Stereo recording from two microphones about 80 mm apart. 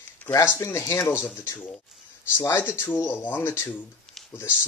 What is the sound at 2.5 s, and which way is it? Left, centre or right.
Speech, left.